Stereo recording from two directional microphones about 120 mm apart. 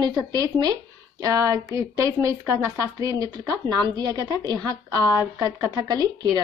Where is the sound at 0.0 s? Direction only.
35° right (ahead or behind).